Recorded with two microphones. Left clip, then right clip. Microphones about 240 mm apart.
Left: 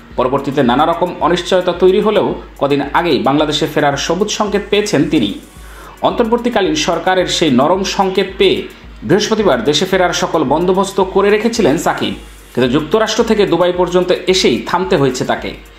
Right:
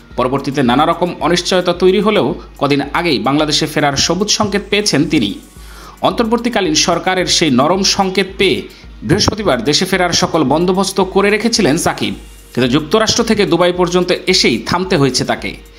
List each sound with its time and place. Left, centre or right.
0.2 s speech: right